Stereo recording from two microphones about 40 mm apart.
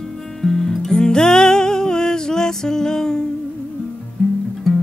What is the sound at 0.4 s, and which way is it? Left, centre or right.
Music, centre.